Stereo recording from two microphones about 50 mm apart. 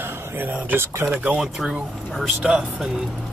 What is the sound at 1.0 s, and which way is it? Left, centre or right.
Speech, right.